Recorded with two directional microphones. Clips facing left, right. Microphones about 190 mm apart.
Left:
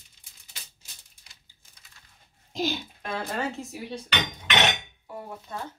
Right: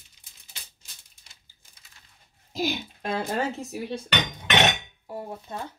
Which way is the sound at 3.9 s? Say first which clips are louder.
Right 2 dB; 50° right (ahead or behind).